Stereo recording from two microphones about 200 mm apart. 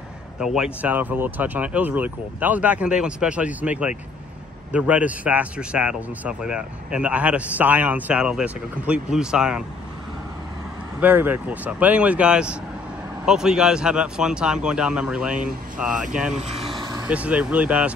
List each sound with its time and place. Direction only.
0.4 s a man's voice: 5° right (ahead or behind)
11.0 s a man's voice: 10° right (ahead or behind)
16.3 s speech: 30° right (ahead or behind)
16.8 s vehicle: 20° right (ahead or behind)
17.1 s speech: 5° right (ahead or behind)